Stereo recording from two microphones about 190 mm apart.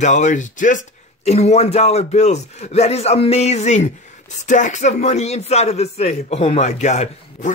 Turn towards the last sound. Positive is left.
turn(degrees=35)  # may be behind; listen again after turning